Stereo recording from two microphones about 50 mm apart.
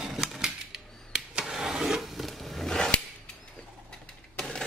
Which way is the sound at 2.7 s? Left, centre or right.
Centre.